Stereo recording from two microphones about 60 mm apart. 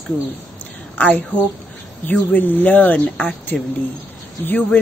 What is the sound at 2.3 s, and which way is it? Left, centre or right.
A woman's voice, left.